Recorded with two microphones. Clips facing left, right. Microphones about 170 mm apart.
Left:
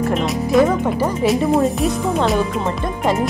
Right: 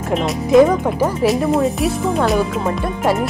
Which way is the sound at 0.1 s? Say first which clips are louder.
Right 7 dB; centre (ahead or behind).